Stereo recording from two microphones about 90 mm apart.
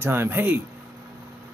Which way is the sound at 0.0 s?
25° right (ahead or behind).